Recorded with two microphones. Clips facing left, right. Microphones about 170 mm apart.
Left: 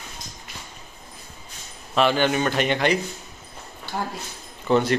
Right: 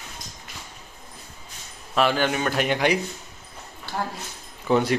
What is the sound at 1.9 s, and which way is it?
Speech, centre (ahead or behind).